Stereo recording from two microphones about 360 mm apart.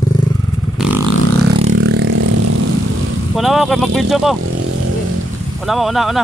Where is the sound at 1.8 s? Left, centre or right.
Right.